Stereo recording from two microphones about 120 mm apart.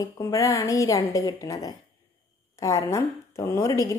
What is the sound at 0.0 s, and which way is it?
A woman's voice, 25° left (ahead or behind).